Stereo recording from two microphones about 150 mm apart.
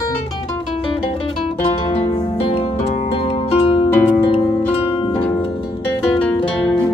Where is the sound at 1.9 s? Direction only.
40° left (ahead or behind).